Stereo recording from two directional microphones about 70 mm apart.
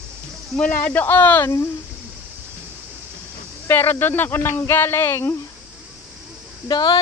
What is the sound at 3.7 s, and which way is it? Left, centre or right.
Speech, left.